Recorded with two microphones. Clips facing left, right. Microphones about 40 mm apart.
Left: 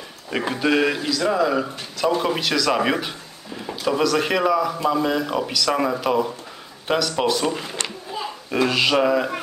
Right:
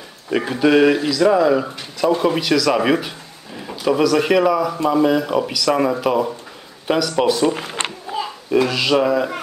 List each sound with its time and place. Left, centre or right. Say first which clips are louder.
0.6 s speech: right 7 dB; centre
7.5 s a sound: right 3 dB; right
8.5 s speech: right 2 dB; centre